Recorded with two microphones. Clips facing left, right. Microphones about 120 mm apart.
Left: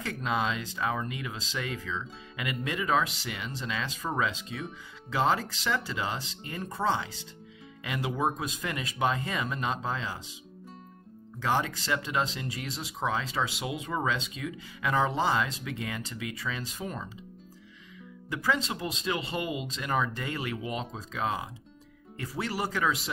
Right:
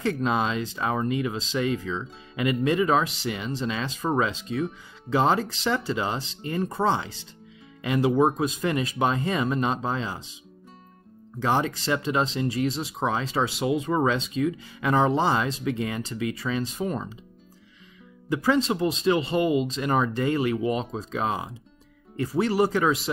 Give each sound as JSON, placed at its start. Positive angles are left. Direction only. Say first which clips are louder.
{"t": 0.0, "sound": "speech", "louder": "right 6 dB", "side_deg": -35}
{"t": 11.3, "sound": "speech", "louder": "right 4 dB", "side_deg": -30}
{"t": 18.3, "sound": "speech", "louder": "right 7 dB", "side_deg": -30}